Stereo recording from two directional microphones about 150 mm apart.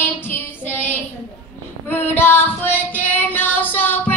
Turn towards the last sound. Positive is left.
turn(degrees=10)  # may be behind; listen again after turning